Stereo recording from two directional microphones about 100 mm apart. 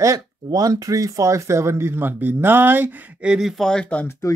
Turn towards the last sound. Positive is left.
turn(degrees=35)  # may be behind; listen again after turning